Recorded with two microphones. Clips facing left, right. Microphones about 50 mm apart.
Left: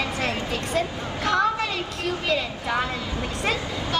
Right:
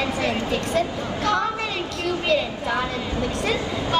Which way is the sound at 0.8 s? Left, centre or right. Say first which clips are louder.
Right 3 dB; left.